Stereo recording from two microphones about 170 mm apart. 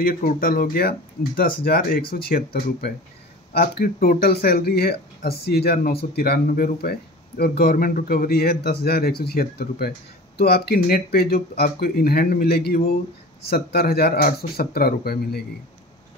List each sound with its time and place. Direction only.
0.0 s speech: 60° left (ahead or behind)